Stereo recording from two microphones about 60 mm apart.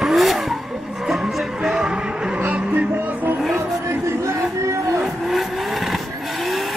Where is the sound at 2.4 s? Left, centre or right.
Right.